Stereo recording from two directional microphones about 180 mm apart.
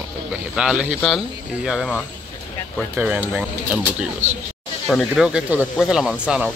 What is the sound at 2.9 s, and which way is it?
Speech, 10° right (ahead or behind).